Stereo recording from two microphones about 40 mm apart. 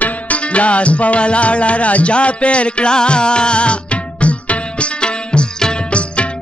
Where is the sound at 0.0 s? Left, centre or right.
Left.